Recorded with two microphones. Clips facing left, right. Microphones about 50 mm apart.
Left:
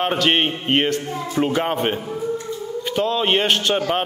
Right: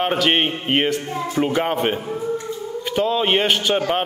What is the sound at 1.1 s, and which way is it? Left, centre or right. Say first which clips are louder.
Speech: right 1 dB; centre.